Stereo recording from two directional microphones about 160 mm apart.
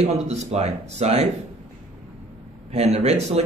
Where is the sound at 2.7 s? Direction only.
40° right (ahead or behind).